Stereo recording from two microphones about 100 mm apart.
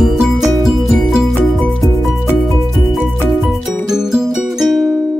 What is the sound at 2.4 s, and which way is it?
Music, centre (ahead or behind).